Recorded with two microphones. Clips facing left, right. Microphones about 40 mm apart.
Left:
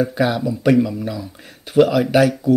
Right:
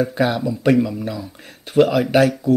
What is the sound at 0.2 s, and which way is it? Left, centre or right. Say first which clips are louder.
Speech: even; centre.